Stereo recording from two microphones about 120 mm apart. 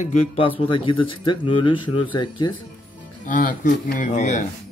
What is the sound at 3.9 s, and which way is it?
Speech, 85° left.